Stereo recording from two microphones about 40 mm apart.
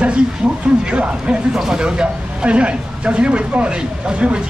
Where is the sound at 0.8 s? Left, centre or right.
Right.